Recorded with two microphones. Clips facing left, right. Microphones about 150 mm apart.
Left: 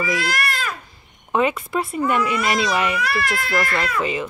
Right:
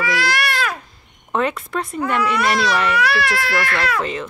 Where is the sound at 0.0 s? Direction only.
80° right.